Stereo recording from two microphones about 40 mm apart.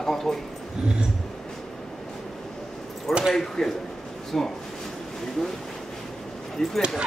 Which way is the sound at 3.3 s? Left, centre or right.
Centre.